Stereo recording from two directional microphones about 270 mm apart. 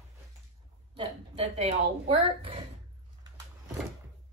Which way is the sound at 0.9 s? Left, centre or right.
Right.